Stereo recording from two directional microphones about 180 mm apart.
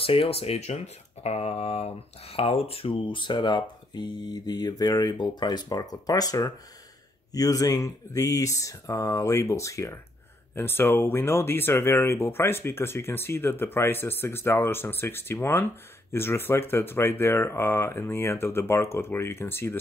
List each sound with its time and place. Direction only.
0.0 s speech: 30° left (ahead or behind); by 19.8 s 15° left (ahead or behind)